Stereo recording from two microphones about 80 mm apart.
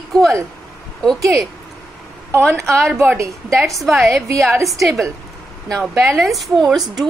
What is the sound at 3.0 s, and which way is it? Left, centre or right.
Speech, right.